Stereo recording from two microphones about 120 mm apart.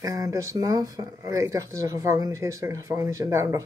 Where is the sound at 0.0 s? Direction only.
30° right (ahead or behind).